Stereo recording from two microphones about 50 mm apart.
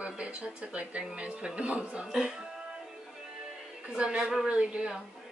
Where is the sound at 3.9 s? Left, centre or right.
Centre.